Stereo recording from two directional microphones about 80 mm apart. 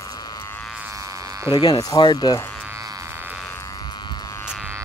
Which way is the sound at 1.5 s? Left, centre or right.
Left.